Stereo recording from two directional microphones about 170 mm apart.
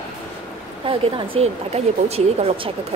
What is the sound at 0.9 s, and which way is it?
Speech, 30° right (ahead or behind).